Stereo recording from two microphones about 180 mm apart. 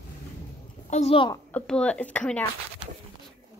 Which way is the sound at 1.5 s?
5° left (ahead or behind).